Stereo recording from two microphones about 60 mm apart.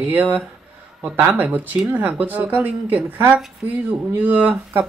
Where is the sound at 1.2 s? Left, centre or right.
Right.